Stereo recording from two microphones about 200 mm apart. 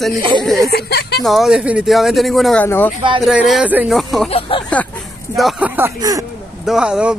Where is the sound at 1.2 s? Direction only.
Centre (ahead or behind).